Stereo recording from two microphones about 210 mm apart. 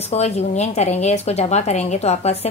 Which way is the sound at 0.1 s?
30° left (ahead or behind).